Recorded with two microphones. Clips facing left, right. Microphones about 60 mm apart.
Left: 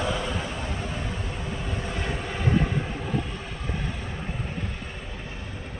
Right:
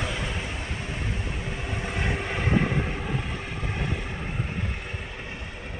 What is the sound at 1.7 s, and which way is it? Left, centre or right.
Vehicle, right.